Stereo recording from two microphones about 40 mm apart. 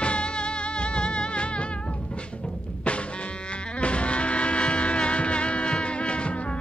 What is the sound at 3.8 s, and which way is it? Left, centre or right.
Music, left.